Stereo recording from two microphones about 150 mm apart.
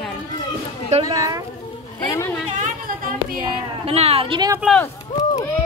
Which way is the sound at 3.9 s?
40° right (ahead or behind).